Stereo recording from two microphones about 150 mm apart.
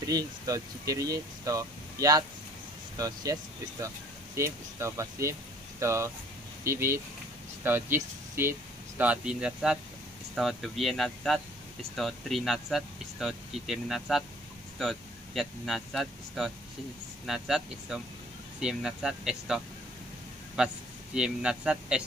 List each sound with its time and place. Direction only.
0.0 s speech: 25° right (ahead or behind)
3.3 s speech: 25° right (ahead or behind); by 22.0 s 5° right (ahead or behind)